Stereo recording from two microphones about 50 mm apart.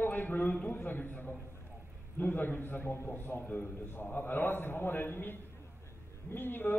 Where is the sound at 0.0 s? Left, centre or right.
Left.